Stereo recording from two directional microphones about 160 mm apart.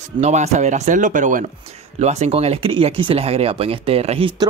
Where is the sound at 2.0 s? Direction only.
45° right (ahead or behind).